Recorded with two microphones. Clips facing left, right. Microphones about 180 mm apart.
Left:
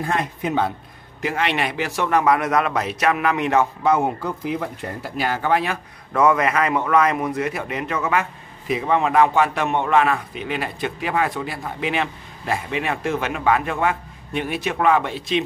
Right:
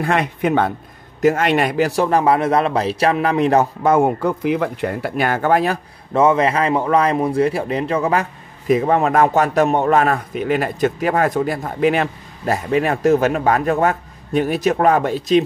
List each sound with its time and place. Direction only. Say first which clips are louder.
0.0 s speech: right 5 dB; 70° right (ahead or behind)
1.2 s a man's voice: right 7 dB; 45° right (ahead or behind)
6.1 s a man's voice: right 3 dB; 25° right (ahead or behind); by 15.4 s 40° right (ahead or behind)